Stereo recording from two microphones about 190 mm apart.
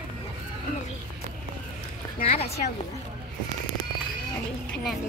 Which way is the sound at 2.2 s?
30° left (ahead or behind).